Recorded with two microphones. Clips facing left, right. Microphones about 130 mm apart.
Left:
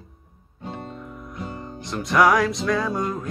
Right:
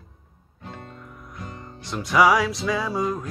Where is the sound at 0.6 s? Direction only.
20° left (ahead or behind).